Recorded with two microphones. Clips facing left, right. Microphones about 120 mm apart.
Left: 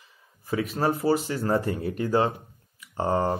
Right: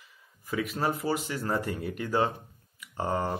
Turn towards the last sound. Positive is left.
turn(degrees=30)  # may be behind; listen again after turning